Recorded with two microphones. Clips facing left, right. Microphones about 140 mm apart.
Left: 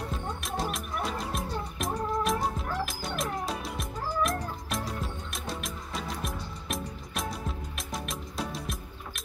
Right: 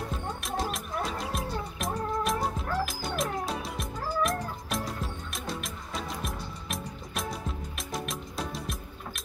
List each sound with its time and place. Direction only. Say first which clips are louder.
0.1 s music: right 1 dB; centre (ahead or behind)